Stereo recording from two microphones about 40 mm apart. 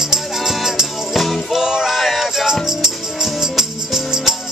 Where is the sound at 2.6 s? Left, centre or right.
Centre.